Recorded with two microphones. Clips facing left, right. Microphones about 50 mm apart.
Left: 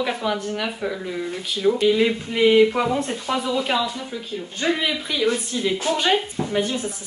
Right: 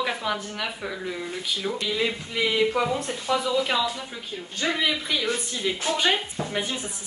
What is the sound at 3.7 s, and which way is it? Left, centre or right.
Speech, centre.